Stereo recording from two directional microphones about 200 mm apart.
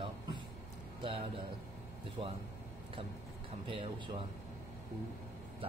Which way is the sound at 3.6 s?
25° right (ahead or behind).